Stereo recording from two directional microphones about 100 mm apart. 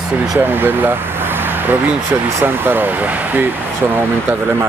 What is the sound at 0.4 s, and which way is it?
Speech, 20° right (ahead or behind).